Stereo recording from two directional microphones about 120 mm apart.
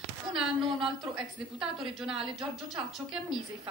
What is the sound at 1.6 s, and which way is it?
Speech, 5° right (ahead or behind).